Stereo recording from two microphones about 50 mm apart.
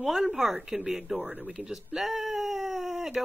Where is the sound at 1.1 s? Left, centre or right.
Right.